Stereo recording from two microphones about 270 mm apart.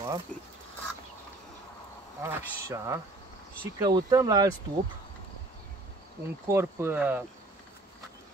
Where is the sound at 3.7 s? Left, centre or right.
Centre.